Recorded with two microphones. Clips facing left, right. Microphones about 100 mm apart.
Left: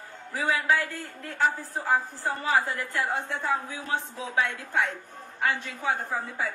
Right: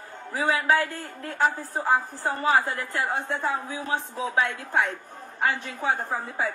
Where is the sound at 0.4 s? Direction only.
45° right (ahead or behind).